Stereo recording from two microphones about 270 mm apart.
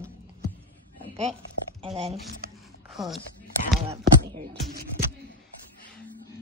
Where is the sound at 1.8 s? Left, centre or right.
Right.